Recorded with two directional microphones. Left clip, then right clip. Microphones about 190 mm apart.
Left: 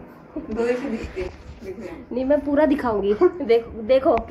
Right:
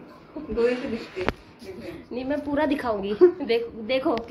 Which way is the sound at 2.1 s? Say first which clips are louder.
Left 8 dB; 20° left (ahead or behind).